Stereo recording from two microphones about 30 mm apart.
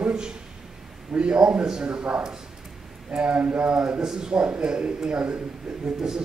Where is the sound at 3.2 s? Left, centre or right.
Right.